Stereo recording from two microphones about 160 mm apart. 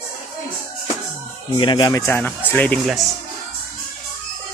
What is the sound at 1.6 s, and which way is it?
Speech, 30° left (ahead or behind).